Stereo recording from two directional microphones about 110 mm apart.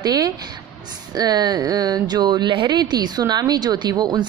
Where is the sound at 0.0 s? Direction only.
35° right (ahead or behind).